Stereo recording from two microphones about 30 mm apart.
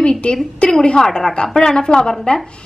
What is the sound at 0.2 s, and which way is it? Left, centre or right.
Speech, left.